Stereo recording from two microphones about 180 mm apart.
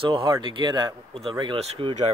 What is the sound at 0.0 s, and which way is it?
Speech, 25° right (ahead or behind).